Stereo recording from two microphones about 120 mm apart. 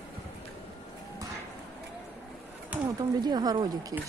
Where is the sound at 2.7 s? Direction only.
10° right (ahead or behind).